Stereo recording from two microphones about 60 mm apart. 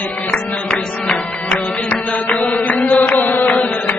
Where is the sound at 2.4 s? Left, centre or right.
Left.